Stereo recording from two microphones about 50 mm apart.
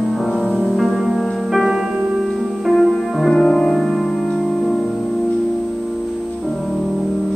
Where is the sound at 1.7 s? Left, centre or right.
Centre.